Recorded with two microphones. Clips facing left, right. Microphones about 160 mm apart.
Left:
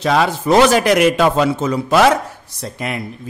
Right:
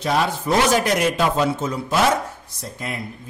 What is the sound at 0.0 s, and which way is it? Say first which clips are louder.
Speech: left 5 dB; 90° left.